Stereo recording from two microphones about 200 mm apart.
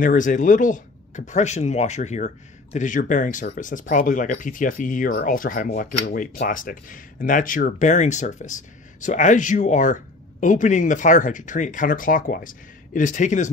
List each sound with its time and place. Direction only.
0.0 s speech: 40° left (ahead or behind)